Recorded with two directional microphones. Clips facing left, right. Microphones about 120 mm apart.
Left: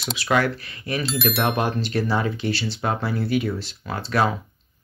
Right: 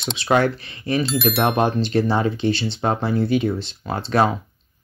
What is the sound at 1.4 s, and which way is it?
Speech, 30° right (ahead or behind).